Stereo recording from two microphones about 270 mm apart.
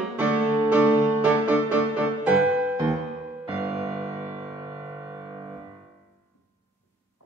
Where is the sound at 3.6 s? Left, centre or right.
Right.